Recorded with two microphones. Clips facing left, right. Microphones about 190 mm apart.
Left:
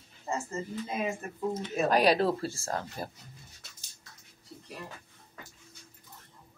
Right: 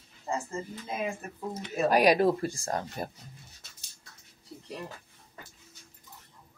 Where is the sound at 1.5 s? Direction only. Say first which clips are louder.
Right 2 dB; 10° right (ahead or behind).